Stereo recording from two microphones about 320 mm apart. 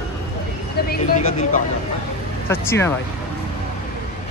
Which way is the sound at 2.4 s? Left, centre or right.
Centre.